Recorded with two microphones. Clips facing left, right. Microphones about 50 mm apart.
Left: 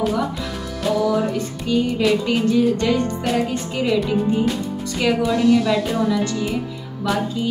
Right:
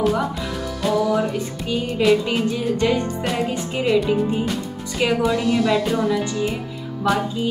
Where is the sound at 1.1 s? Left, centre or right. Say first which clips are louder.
Even; centre.